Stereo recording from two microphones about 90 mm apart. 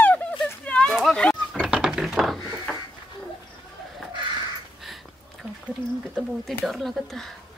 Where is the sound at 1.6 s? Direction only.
5° right (ahead or behind).